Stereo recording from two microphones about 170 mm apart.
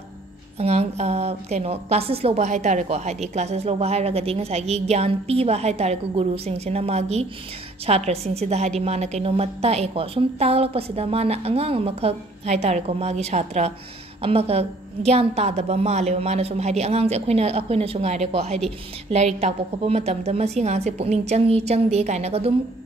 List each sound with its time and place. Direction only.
0.6 s a woman's voice: 40° right (ahead or behind)